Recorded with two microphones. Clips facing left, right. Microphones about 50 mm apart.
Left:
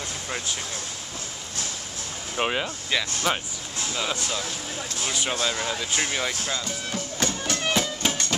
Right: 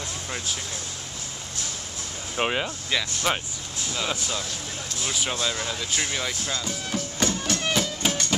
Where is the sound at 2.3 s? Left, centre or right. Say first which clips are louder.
Even; centre.